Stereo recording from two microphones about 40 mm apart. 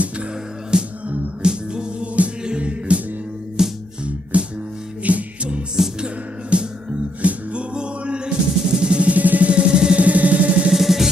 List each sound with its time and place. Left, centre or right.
0.7 s music: right
1.0 s music: right
1.4 s music: right
3.6 s music: centre
4.0 s music: right
5.8 s music: centre
6.5 s music: right
7.2 s music: right
7.7 s music: right
9.1 s music: right
9.5 s music: right
9.9 s music: right
10.7 s music: centre